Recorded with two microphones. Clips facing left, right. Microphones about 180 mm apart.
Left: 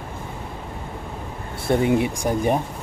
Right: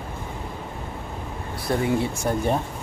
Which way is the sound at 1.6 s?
20° left (ahead or behind).